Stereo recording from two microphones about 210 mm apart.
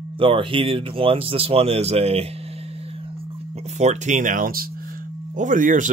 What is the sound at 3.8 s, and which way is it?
Speech, 35° right (ahead or behind).